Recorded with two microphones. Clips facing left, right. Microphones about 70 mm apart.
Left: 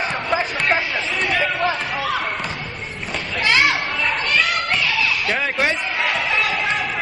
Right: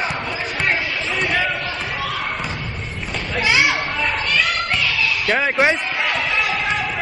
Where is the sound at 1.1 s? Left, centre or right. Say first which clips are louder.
Right 1 dB; centre.